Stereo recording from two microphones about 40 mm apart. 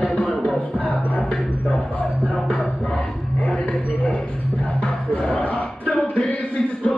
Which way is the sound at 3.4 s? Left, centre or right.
Left.